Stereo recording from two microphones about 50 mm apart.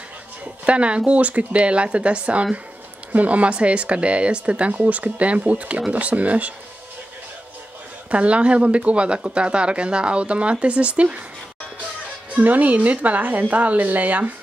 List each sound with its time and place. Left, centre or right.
0.7 s speech: right
8.1 s speech: right
12.3 s speech: right